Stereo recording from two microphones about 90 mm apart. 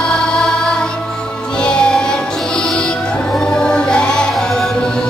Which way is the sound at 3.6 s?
10° left (ahead or behind).